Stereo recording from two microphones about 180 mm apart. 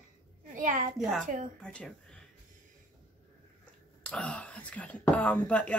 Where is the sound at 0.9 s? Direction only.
Centre (ahead or behind).